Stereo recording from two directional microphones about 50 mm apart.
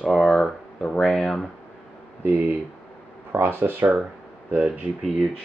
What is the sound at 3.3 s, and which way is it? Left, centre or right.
Speech, right.